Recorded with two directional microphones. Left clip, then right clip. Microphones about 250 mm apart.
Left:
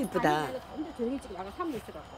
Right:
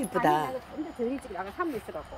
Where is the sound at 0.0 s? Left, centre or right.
Centre.